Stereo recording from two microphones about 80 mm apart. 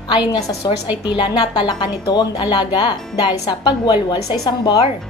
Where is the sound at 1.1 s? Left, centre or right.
Left.